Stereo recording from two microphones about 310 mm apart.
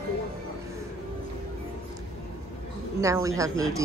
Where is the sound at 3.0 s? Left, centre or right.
Centre.